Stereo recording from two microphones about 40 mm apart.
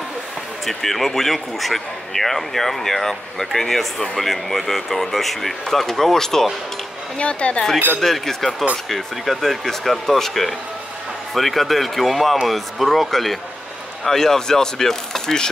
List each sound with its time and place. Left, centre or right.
0.7 s speech: centre
7.2 s speech: left
8.0 s speech: centre